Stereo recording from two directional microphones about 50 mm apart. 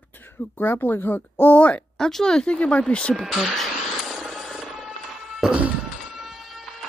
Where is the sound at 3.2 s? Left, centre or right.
Centre.